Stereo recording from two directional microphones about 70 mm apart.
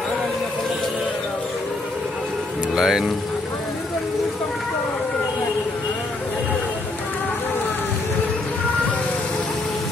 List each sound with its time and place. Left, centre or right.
2.7 s speech: centre